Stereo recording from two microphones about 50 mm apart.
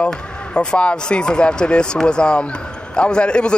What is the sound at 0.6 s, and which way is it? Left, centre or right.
Speech, left.